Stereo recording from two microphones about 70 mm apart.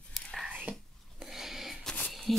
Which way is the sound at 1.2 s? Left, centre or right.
Centre.